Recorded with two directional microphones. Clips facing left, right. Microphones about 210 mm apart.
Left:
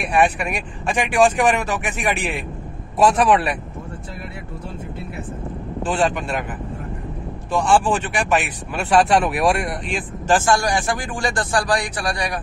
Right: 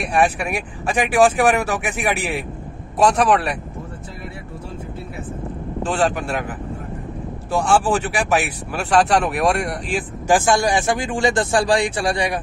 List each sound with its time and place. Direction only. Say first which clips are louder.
0.0 s speech: even; centre (ahead or behind)
3.0 s speech: even; centre (ahead or behind)
5.9 s speech: even; centre (ahead or behind)
7.8 s speech: right 1 dB; 5° right (ahead or behind); by 12.4 s 25° right (ahead or behind)